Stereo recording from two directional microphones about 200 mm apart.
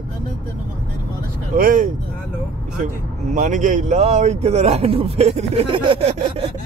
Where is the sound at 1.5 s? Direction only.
45° right (ahead or behind).